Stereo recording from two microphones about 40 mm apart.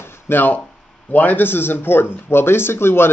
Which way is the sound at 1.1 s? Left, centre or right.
Left.